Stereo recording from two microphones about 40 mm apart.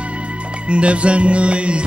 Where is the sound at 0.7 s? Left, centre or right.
Right.